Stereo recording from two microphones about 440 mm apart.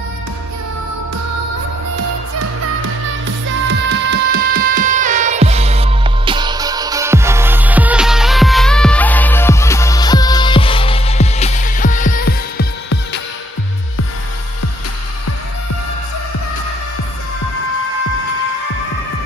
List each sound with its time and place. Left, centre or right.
2.0 s music: right; by 12.6 s centre